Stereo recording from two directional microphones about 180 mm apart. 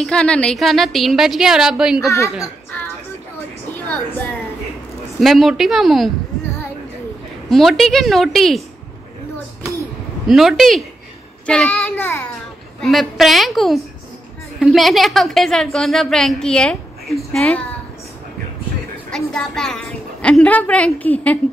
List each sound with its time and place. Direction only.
0.0 s a woman's voice: 5° left (ahead or behind)
2.0 s a child's voice: 15° left (ahead or behind)
5.2 s a woman's voice: centre (ahead or behind)
7.4 s a woman's voice: centre (ahead or behind)
10.2 s a woman's voice: centre (ahead or behind)
19.0 s a woman's voice: 5° left (ahead or behind)